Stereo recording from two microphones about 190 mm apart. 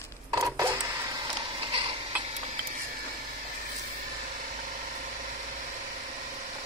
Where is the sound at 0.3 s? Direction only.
15° right (ahead or behind).